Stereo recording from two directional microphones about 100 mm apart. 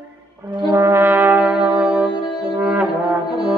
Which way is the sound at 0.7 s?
25° right (ahead or behind).